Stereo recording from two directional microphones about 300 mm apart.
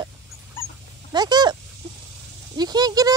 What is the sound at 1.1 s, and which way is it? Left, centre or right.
Speech, centre.